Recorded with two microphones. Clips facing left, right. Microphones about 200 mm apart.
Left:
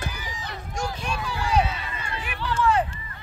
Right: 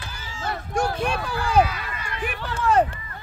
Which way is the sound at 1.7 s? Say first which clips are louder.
Even; 25° left (ahead or behind).